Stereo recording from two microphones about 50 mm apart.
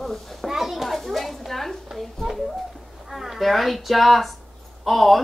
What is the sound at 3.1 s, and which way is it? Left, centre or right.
Speech, centre.